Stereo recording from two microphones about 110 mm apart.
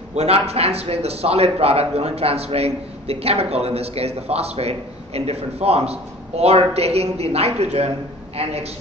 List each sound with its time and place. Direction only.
0.1 s a man's voice: 75° right (ahead or behind)